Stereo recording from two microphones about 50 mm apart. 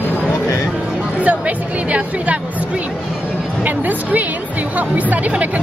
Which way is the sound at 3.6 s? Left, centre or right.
Right.